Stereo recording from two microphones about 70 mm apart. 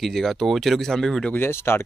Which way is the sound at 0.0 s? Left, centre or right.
Centre.